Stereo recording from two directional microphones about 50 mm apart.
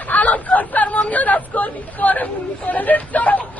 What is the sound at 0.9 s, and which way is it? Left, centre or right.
Chatter, left.